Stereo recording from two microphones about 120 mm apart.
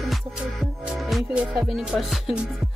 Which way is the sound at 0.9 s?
Centre (ahead or behind).